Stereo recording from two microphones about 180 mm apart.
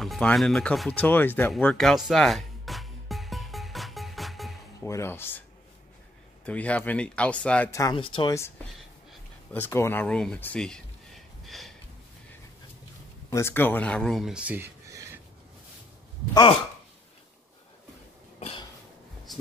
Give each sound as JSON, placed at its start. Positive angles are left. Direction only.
{"t": 0.0, "sound": "speech", "side_deg": 0}
{"t": 1.5, "sound": "music", "side_deg": 0}
{"t": 4.7, "sound": "speech", "side_deg": 15}
{"t": 6.4, "sound": "speech", "side_deg": 5}
{"t": 7.9, "sound": "speech", "side_deg": 30}
{"t": 9.5, "sound": "speech", "side_deg": 15}
{"t": 11.4, "sound": "snort", "side_deg": 0}
{"t": 13.3, "sound": "speech", "side_deg": 15}
{"t": 18.4, "sound": "cough", "side_deg": 30}